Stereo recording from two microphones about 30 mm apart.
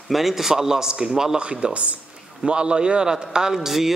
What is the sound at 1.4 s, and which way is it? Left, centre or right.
Speech, right.